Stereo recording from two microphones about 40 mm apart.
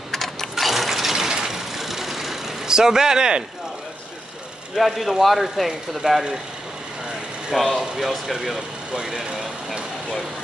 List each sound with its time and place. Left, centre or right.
0.1 s mechanisms: centre
4.7 s speech: centre
6.0 s speech: centre
7.7 s speech: centre
8.0 s speech: centre
8.9 s speech: centre